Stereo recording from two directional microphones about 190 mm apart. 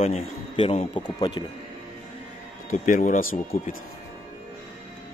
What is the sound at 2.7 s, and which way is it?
Speech, 40° left (ahead or behind).